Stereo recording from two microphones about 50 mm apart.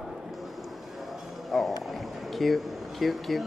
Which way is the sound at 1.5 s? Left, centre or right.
Centre.